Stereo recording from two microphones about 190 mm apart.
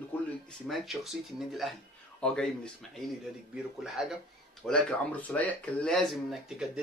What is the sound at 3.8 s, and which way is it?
Speech, centre (ahead or behind).